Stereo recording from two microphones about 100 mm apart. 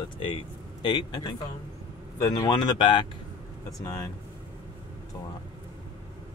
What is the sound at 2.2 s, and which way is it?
Speech, 40° left (ahead or behind).